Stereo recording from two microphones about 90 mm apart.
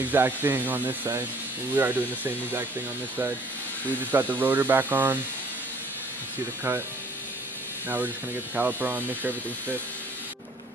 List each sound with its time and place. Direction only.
0.0 s speech: 20° right (ahead or behind)
3.9 s speech: 20° right (ahead or behind)
8.5 s speech: 20° right (ahead or behind)